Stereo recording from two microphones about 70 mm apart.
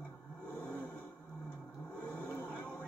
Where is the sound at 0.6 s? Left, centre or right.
Left.